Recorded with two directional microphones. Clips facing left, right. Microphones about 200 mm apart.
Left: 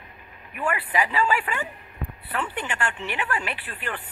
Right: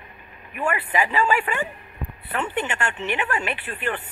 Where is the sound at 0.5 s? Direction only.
25° right (ahead or behind).